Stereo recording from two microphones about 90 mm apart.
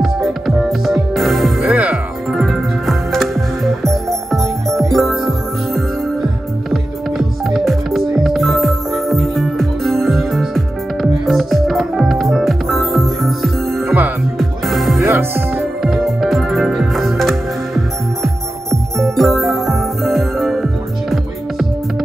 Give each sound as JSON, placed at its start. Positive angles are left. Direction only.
{"t": 0.0, "sound": "music", "side_deg": -5}
{"t": 1.6, "sound": "music", "side_deg": -15}
{"t": 2.3, "sound": "music", "side_deg": 0}
{"t": 6.7, "sound": "music", "side_deg": -5}
{"t": 15.0, "sound": "music", "side_deg": -25}
{"t": 15.8, "sound": "music", "side_deg": 0}